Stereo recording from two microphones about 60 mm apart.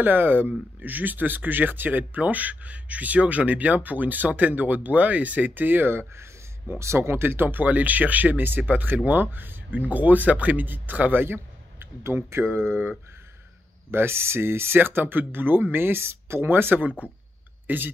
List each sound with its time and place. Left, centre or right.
0.0 s speech: right